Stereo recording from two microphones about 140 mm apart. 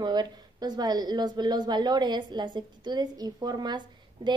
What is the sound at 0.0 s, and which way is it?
Speech, 30° right (ahead or behind).